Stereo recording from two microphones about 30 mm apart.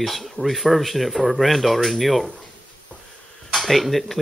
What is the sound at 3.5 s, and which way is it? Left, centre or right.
Speech, centre.